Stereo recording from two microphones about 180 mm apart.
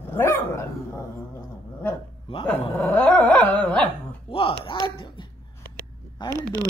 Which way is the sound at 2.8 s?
10° left (ahead or behind).